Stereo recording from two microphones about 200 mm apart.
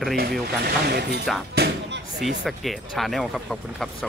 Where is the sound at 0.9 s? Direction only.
55° right (ahead or behind).